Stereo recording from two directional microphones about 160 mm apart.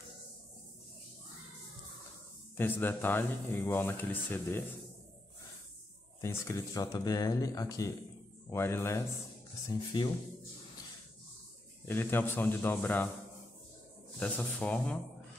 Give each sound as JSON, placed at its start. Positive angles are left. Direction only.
{"t": 2.5, "sound": "speech", "side_deg": 10}
{"t": 6.2, "sound": "speech", "side_deg": 15}
{"t": 11.9, "sound": "speech", "side_deg": 15}
{"t": 14.2, "sound": "speech", "side_deg": 10}